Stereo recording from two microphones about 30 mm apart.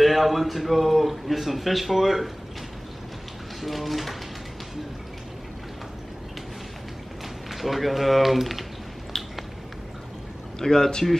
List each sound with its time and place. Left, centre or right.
0.0 s a man's voice: centre
3.6 s a man's voice: centre
7.5 s a man's voice: centre
10.6 s speech: centre